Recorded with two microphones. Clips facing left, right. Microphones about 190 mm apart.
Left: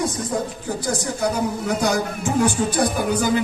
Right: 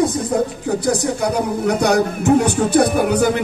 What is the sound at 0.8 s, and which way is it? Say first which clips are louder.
A man's voice: right 3 dB; 65° right (ahead or behind).